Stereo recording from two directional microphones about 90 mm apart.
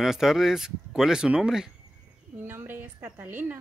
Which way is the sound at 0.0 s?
5° right (ahead or behind).